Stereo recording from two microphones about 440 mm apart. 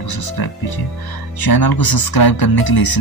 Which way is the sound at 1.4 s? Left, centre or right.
Left.